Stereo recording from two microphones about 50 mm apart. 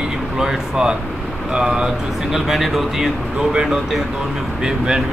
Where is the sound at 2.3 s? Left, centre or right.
Centre.